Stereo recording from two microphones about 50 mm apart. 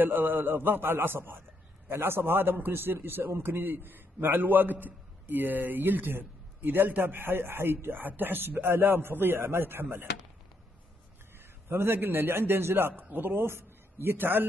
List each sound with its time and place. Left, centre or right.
0.0 s a man's voice: right
11.7 s a man's voice: right